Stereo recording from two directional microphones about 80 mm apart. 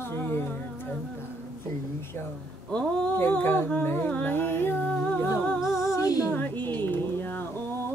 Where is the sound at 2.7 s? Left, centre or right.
Centre.